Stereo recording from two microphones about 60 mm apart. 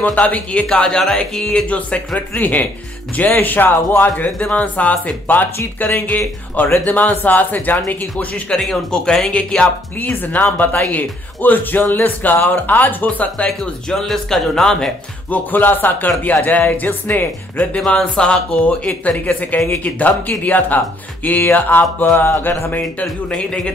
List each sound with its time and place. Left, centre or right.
0.0 s speech: left; by 1.7 s centre
1.7 s speech: left
8.5 s speech: centre
10.2 s speech: left
13.8 s speech: centre
15.2 s speech: left
23.3 s speech: centre